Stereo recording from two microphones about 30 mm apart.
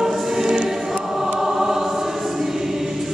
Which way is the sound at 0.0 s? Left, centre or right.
Centre.